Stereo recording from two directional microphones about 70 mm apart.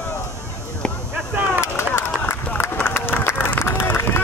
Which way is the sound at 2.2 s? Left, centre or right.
Left.